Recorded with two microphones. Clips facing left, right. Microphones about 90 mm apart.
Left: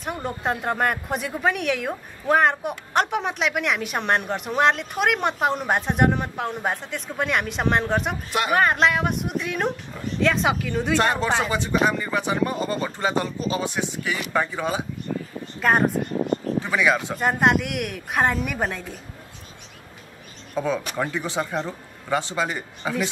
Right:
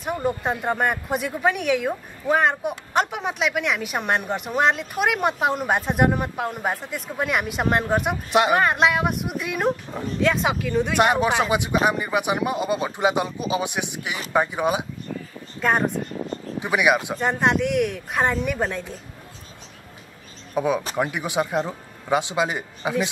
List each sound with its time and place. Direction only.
0.0 s a woman's voice: centre (ahead or behind)
8.3 s a woman's voice: 20° right (ahead or behind)
8.5 s a woman's voice: 5° right (ahead or behind)
10.9 s speech: 15° right (ahead or behind)
16.5 s speech: 15° right (ahead or behind)
17.1 s a woman's voice: 5° left (ahead or behind)
20.5 s speech: 15° right (ahead or behind)